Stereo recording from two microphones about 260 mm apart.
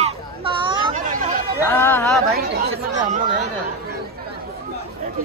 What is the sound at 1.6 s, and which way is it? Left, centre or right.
Music, centre.